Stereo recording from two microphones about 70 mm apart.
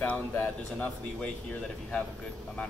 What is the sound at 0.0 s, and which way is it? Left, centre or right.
Speech, centre.